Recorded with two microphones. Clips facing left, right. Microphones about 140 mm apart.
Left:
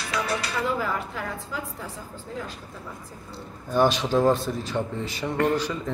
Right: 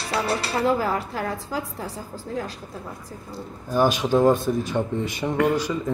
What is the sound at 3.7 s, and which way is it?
Speech, 10° right (ahead or behind).